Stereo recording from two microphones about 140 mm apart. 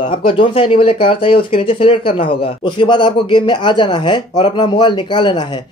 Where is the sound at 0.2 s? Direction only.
40° left (ahead or behind).